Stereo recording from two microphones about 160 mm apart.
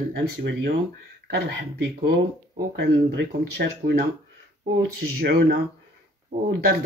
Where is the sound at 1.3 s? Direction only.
90° right.